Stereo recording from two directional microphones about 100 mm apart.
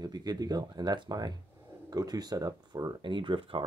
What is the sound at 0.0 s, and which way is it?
Speech, 40° right (ahead or behind).